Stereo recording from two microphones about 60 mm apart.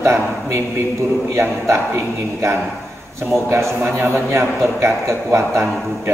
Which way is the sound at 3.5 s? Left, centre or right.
Right.